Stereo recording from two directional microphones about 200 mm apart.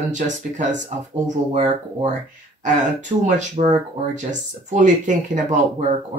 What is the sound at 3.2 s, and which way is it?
Speech, 35° right (ahead or behind).